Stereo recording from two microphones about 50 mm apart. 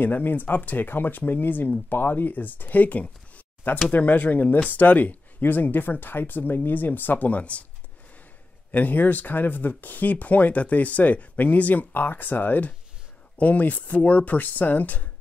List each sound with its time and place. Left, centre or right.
0.0 s speech: left
8.7 s speech: left